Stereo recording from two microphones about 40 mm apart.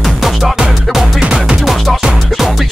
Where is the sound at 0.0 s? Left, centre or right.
Centre.